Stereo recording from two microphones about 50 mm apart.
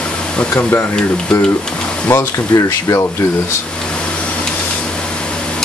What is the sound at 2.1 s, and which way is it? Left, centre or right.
Speech, left.